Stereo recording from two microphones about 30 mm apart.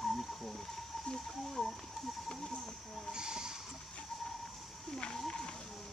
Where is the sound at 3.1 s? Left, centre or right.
Right.